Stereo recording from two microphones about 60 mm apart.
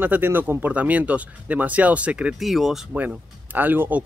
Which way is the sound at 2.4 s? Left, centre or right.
Centre.